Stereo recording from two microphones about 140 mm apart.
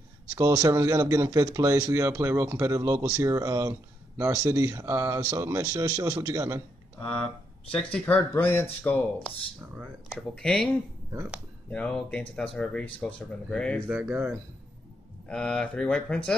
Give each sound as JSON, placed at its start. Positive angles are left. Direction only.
{"t": 0.3, "sound": "speech", "side_deg": -25}
{"t": 7.7, "sound": "speech", "side_deg": 10}
{"t": 9.8, "sound": "speech", "side_deg": 0}
{"t": 11.7, "sound": "speech", "side_deg": 10}
{"t": 13.8, "sound": "speech", "side_deg": -10}
{"t": 15.2, "sound": "speech", "side_deg": 5}